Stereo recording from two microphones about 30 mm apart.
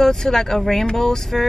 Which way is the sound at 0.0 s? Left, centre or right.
Centre.